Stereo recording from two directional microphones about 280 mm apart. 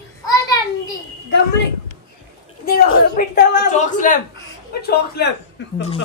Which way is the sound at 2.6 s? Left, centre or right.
Left.